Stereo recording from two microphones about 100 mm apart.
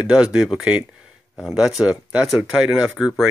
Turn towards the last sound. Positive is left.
turn(degrees=-5)  # may be behind; listen again after turning